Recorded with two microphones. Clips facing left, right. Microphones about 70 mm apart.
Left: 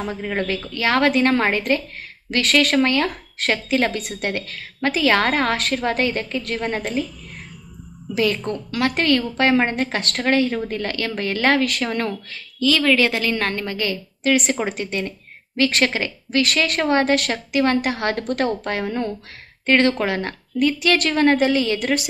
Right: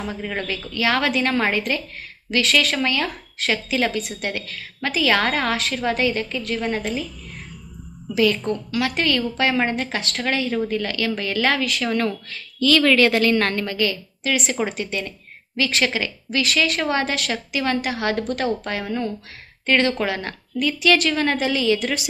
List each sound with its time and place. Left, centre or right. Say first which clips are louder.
0.0 s a woman's voice: left 3 dB; left
8.7 s a woman's voice: left 4 dB; left
11.8 s speech: right 1 dB; left
12.5 s a woman's voice: right 1 dB; centre
13.7 s a woman's voice: right 1 dB; left
14.3 s a woman's voice: left 2 dB; left
21.7 s a woman's voice: left 3 dB; left